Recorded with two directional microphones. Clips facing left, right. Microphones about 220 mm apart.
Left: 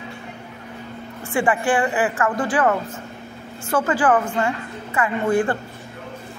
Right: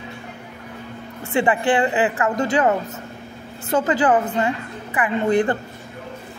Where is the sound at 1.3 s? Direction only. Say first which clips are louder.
Right 1 dB; 20° right (ahead or behind).